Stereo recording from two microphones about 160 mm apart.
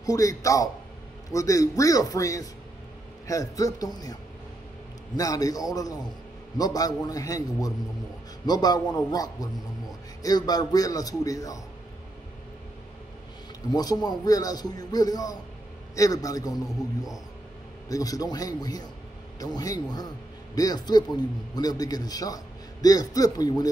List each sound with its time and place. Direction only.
0.0 s a man's voice: 20° left (ahead or behind)
13.7 s a man's voice: 25° left (ahead or behind)
17.8 s a man's voice: 20° left (ahead or behind)